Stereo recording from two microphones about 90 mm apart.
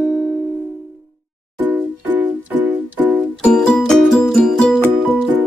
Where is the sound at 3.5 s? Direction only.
5° left (ahead or behind).